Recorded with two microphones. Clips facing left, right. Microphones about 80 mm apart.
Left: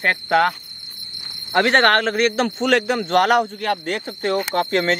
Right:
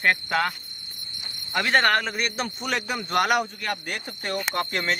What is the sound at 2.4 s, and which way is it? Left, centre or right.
Speech, left.